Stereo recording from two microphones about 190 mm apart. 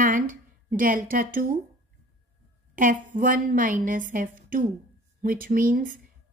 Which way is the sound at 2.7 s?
45° right (ahead or behind).